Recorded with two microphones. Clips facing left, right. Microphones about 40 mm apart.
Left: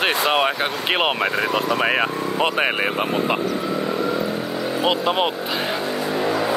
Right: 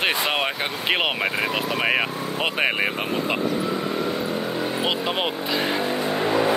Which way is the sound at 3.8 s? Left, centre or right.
Left.